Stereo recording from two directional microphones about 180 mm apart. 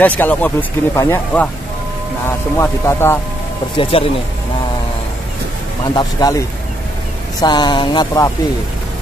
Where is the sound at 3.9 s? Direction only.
30° left (ahead or behind).